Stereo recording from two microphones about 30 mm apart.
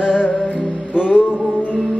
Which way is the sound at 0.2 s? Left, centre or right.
Left.